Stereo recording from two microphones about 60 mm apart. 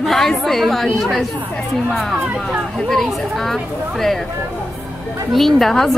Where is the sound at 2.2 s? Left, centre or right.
Right.